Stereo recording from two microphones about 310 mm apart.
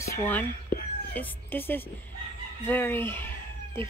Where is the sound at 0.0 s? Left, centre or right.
Centre.